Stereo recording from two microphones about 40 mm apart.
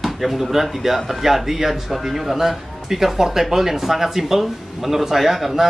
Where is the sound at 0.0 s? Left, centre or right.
Centre.